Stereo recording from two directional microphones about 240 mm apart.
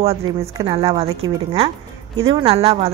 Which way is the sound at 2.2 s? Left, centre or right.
Right.